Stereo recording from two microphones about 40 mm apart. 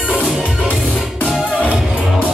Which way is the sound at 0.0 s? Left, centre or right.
Right.